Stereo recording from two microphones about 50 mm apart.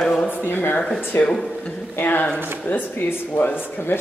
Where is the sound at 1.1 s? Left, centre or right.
Left.